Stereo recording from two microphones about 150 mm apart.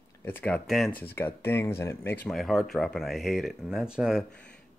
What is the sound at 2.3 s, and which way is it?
Speech, centre (ahead or behind).